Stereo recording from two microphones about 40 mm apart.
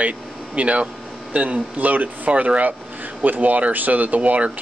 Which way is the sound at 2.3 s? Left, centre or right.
Right.